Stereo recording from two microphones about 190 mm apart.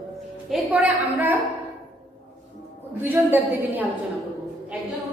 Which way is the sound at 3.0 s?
10° right (ahead or behind).